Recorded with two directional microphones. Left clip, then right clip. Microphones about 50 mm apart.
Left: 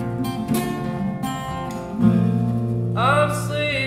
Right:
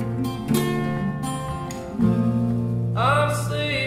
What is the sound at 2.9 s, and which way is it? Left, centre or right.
Music, centre.